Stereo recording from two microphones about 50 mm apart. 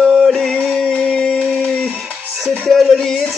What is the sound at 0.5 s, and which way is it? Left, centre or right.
Music, centre.